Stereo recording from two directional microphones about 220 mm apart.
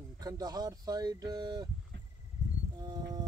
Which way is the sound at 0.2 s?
15° right (ahead or behind).